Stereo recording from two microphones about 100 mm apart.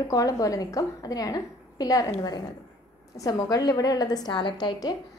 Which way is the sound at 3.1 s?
35° left (ahead or behind).